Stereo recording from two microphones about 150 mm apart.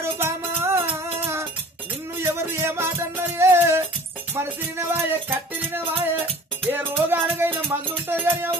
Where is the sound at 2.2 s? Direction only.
15° right (ahead or behind).